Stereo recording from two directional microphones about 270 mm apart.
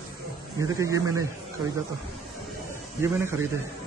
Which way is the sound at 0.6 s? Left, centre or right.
Centre.